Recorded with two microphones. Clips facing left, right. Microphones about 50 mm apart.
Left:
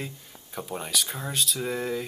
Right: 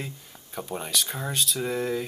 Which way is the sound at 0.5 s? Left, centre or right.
Centre.